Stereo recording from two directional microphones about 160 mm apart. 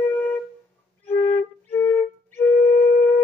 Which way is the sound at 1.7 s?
10° left (ahead or behind).